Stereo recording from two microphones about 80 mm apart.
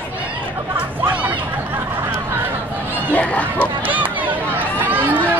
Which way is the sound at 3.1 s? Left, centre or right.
Centre.